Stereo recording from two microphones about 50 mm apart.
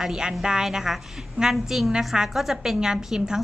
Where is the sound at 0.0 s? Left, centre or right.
Centre.